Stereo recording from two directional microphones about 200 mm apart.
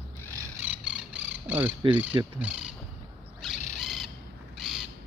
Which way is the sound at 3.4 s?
Centre (ahead or behind).